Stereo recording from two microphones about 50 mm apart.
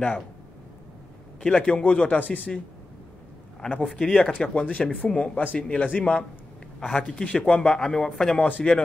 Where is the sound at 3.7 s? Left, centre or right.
Centre.